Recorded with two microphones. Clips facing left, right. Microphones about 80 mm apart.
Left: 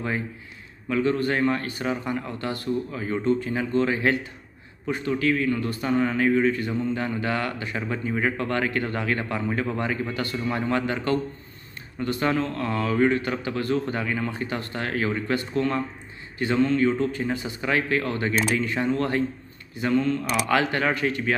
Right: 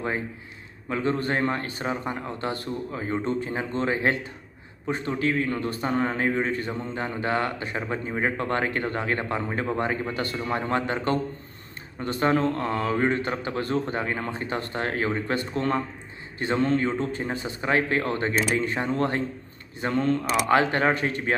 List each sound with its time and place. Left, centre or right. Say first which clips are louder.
0.8 s speech: left 3 dB; right
20.2 s speech: right 2 dB; right